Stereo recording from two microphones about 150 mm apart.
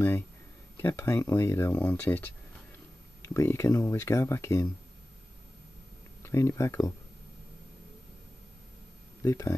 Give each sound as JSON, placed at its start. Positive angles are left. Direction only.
{"t": 0.7, "sound": "speech", "side_deg": 15}
{"t": 6.2, "sound": "speech", "side_deg": 20}
{"t": 9.2, "sound": "speech", "side_deg": 20}